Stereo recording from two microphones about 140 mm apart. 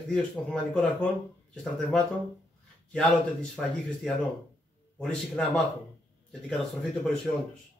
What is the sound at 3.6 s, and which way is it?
Speech, 5° left (ahead or behind).